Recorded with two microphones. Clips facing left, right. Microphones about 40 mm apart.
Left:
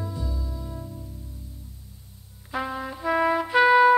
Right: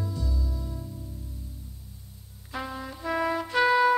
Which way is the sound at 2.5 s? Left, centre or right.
Centre.